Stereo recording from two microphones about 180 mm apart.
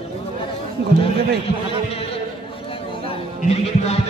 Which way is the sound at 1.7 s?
30° left (ahead or behind).